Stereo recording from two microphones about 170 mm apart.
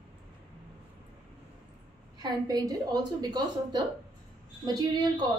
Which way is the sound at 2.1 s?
20° right (ahead or behind).